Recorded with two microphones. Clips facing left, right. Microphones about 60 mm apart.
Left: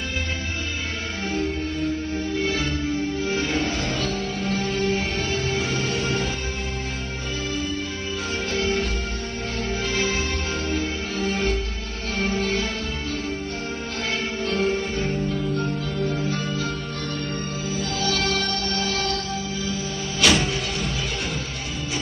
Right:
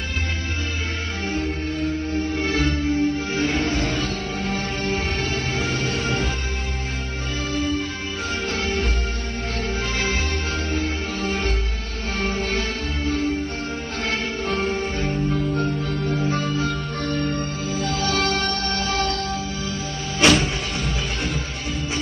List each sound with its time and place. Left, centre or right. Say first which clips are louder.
2.5 s music: right 4 dB; right
14.5 s music: left 1 dB; centre
16.5 s music: right 3 dB; right
18.3 s music: right 2 dB; right
20.2 s music: right 3 dB; right